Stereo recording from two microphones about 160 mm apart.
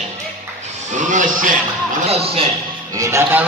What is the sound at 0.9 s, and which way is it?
Speech, 50° right (ahead or behind).